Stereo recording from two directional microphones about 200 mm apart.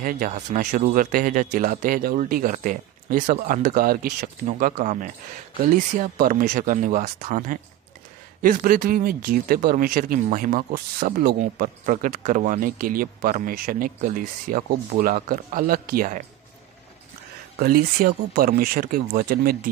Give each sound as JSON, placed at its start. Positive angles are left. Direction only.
{"t": 0.0, "sound": "speech", "side_deg": -40}
{"t": 17.6, "sound": "speech", "side_deg": -45}